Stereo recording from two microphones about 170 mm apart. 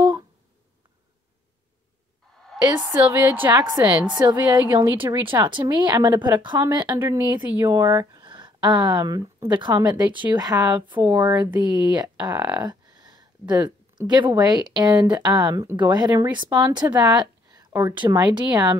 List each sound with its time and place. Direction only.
2.9 s a woman's voice: 15° right (ahead or behind)
3.6 s speech: 25° right (ahead or behind)
7.0 s speech: 10° right (ahead or behind)
11.7 s speech: 25° right (ahead or behind)